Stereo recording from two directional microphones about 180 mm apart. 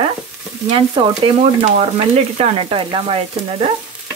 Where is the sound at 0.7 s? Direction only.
30° right (ahead or behind).